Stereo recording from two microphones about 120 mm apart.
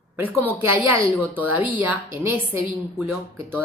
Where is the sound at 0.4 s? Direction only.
20° right (ahead or behind).